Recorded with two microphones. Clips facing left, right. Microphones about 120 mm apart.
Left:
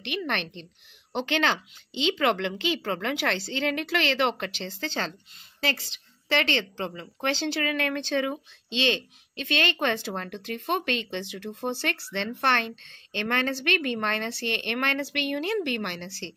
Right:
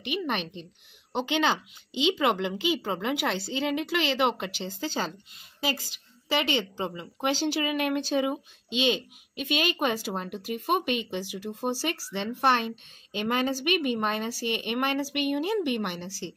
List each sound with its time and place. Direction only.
0.2 s a woman's voice: 10° right (ahead or behind)
6.2 s a woman's voice: 10° right (ahead or behind)
16.1 s a woman's voice: 65° left (ahead or behind)